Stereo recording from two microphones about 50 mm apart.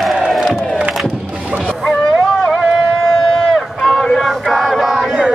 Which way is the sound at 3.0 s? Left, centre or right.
Centre.